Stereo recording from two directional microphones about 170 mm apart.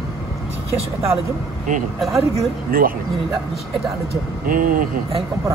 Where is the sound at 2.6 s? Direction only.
60° right (ahead or behind).